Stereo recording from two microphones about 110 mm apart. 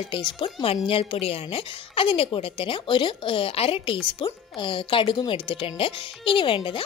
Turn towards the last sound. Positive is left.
turn(degrees=55)  # may be behind; listen again after turning